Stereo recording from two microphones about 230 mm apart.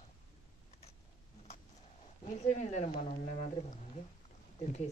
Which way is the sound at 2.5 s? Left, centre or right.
Left.